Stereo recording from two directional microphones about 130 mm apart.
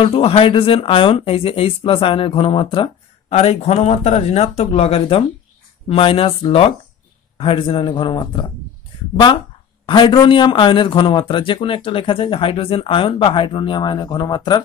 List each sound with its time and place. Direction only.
0.0 s a man's voice: 50° left (ahead or behind)
9.8 s a man's voice: 40° left (ahead or behind)